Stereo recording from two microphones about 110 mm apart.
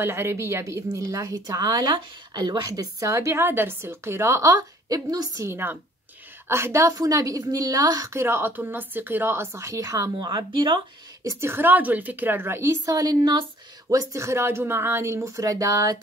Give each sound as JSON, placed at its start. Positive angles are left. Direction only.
{"t": 0.0, "sound": "speech", "side_deg": -25}
{"t": 10.1, "sound": "a woman's voice", "side_deg": -45}
{"t": 11.2, "sound": "speech", "side_deg": -20}
{"t": 12.8, "sound": "a woman's voice", "side_deg": -35}
{"t": 13.8, "sound": "speech", "side_deg": -25}